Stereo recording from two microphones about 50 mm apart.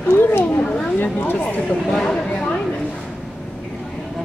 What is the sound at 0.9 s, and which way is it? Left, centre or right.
Speech, left.